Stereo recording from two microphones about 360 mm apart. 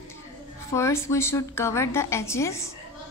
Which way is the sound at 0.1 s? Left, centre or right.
Centre.